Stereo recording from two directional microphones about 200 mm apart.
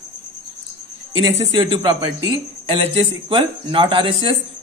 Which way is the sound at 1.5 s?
25° right (ahead or behind).